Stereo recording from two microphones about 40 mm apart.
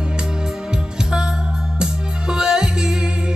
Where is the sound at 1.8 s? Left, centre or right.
Centre.